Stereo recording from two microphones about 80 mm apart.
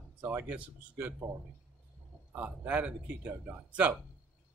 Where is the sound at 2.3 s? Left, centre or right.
Right.